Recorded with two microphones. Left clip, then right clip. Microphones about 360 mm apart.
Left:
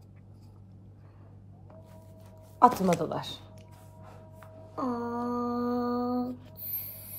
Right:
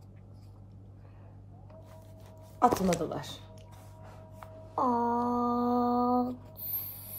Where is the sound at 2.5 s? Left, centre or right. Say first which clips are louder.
Left 4 dB; centre.